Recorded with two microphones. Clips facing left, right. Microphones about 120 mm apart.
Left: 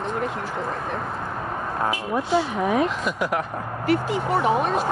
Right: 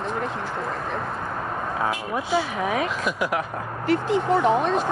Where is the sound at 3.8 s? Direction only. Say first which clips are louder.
Right 1 dB; 10° left (ahead or behind).